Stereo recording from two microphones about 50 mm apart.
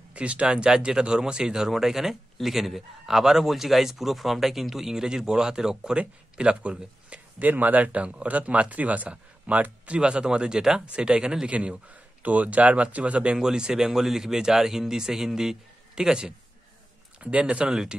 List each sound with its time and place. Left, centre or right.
0.1 s a man's voice: right
11.5 s a man's voice: right
17.2 s speech: right